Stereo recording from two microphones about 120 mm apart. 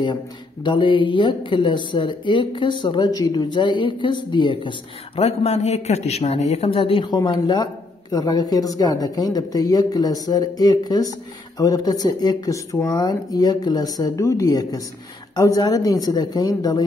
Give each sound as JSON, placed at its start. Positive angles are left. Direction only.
{"t": 0.7, "sound": "a man's voice", "side_deg": 45}
{"t": 5.2, "sound": "a man's voice", "side_deg": 60}